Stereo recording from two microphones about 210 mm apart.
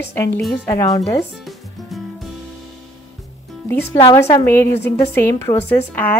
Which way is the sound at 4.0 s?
15° left (ahead or behind).